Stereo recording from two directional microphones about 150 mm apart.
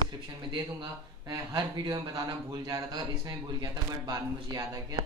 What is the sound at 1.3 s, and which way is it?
Speech, 25° right (ahead or behind).